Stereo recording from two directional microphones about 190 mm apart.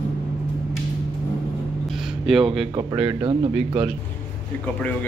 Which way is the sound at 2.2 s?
Centre (ahead or behind).